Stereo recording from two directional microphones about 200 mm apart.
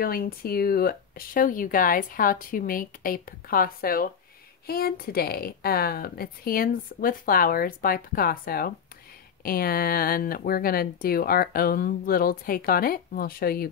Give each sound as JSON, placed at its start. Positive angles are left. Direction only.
{"t": 0.0, "sound": "speech", "side_deg": 45}